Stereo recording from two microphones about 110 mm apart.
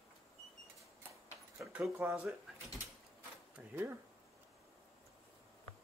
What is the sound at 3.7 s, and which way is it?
Speech, 20° right (ahead or behind).